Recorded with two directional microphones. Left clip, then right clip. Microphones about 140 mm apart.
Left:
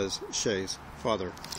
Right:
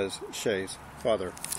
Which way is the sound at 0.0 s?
40° left (ahead or behind).